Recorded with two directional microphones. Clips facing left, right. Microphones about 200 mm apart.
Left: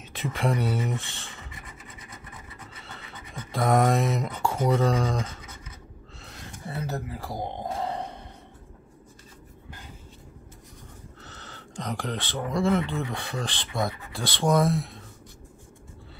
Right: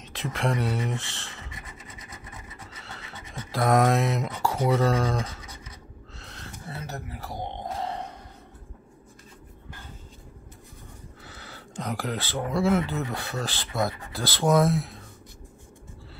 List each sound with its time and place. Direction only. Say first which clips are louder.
0.0 s speech: left 1 dB; centre (ahead or behind)
3.3 s speech: right 1 dB; centre (ahead or behind)
6.1 s a sound: even; centre (ahead or behind)
6.8 s speech: left 6 dB; 30° left (ahead or behind)
7.3 s speech: left 1 dB; 5° left (ahead or behind)
7.9 s a sound: left 2 dB; 35° left (ahead or behind)
11.2 s speech: right 2 dB; 10° right (ahead or behind)